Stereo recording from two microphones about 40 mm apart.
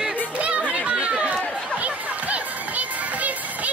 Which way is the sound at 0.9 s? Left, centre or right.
Right.